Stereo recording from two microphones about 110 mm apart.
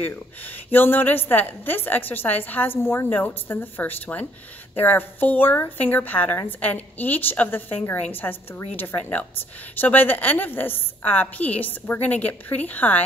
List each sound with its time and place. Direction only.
0.7 s a woman's voice: 20° left (ahead or behind)